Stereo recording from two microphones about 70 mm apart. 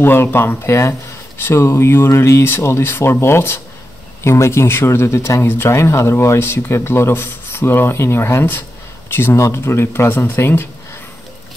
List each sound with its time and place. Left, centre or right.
0.0 s speech: left